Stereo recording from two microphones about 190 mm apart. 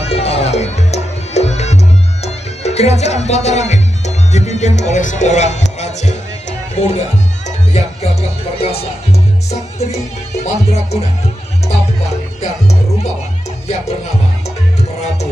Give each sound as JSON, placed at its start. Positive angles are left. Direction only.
{"t": 0.0, "sound": "music", "side_deg": 30}
{"t": 6.7, "sound": "speech", "side_deg": 35}
{"t": 7.4, "sound": "music", "side_deg": 35}
{"t": 10.4, "sound": "speech", "side_deg": 35}
{"t": 14.8, "sound": "music", "side_deg": 35}